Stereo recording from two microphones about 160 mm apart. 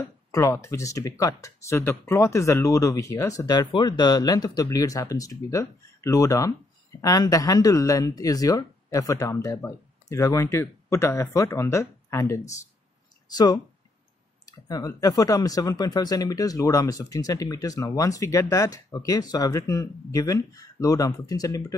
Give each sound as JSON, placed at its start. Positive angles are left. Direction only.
{"t": 0.3, "sound": "speech", "side_deg": 20}